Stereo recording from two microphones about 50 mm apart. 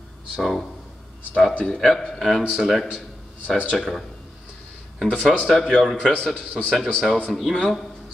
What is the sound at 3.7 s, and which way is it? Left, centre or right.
Speech, centre.